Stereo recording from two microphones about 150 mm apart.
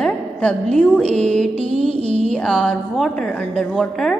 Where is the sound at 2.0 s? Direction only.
45° right (ahead or behind).